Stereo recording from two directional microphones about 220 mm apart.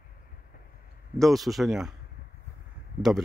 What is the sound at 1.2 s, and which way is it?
Speech, centre (ahead or behind).